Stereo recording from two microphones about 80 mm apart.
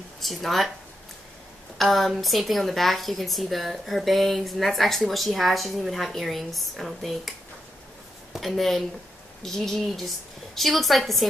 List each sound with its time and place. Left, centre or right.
0.2 s speech: centre
1.8 s a woman's voice: centre